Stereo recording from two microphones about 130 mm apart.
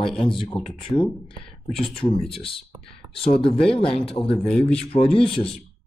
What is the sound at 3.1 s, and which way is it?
A man's voice, 45° left (ahead or behind).